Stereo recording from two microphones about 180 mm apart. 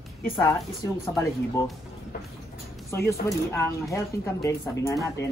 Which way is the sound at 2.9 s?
15° left (ahead or behind).